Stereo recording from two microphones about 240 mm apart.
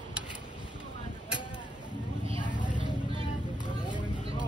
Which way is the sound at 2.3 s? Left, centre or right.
Left.